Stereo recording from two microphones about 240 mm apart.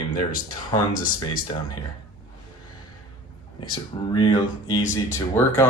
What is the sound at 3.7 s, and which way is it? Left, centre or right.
Speech, centre.